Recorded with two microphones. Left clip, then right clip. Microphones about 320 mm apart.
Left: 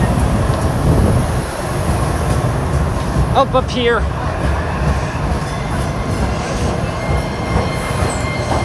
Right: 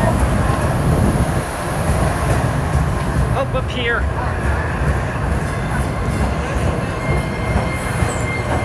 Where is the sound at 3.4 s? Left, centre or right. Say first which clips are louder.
Left 10 dB; left.